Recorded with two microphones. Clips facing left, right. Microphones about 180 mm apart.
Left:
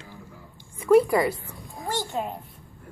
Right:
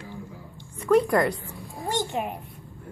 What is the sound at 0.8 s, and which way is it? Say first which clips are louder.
Speech: left 2 dB; 5° left (ahead or behind).